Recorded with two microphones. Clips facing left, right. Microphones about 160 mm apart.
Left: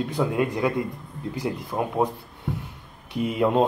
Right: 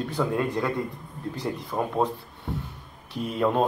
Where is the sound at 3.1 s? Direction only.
15° left (ahead or behind).